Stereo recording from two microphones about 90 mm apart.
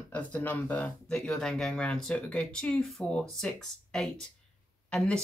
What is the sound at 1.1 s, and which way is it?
Speech, 10° left (ahead or behind).